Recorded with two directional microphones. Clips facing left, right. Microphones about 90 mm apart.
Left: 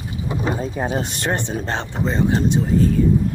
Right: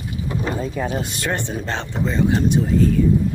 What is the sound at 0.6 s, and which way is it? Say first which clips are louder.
Speech: left 1 dB; 30° left (ahead or behind).